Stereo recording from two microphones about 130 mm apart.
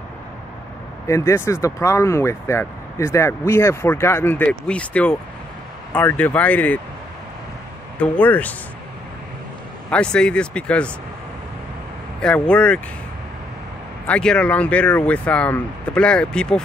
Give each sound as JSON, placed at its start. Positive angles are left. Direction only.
{"t": 1.0, "sound": "speech", "side_deg": 20}
{"t": 8.0, "sound": "speech", "side_deg": 10}
{"t": 9.8, "sound": "speech", "side_deg": 10}
{"t": 12.2, "sound": "speech", "side_deg": 5}
{"t": 14.0, "sound": "speech", "side_deg": 10}